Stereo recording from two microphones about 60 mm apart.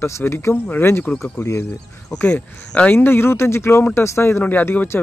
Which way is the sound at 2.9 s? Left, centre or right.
Left.